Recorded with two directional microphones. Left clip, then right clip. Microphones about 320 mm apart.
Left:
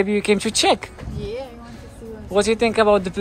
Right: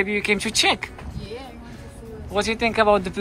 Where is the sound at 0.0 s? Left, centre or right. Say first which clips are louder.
Left 3 dB; centre.